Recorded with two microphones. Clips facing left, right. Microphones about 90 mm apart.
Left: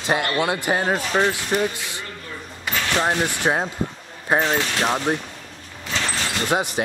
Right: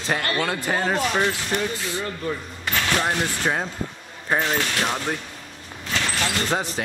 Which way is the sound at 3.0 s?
20° left (ahead or behind).